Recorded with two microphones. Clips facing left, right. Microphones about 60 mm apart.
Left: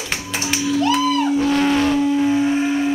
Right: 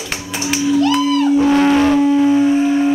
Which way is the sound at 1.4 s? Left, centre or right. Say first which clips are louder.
Right 5 dB; right.